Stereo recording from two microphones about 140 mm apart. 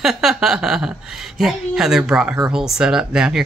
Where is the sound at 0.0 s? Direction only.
Centre (ahead or behind).